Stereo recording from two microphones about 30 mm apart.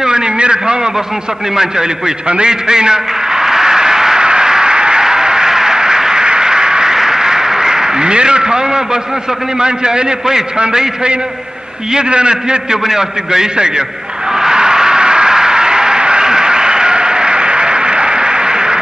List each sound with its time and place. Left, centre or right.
0.0 s a sound: right
1.5 s a man's voice: right
2.2 s a man's voice: right
2.7 s a sound: right
6.2 s quack: right
9.6 s a man's voice: right
11.9 s a man's voice: right
12.8 s a man's voice: centre
14.3 s a sound: right